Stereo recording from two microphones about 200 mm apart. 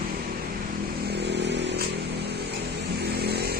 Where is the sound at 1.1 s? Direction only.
55° right (ahead or behind).